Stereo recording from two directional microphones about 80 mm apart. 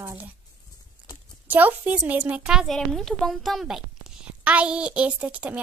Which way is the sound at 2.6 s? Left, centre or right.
Centre.